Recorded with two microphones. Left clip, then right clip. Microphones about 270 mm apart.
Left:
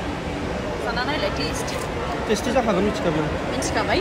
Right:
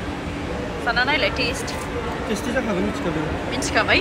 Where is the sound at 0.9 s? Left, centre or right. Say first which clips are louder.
Right 6 dB; centre.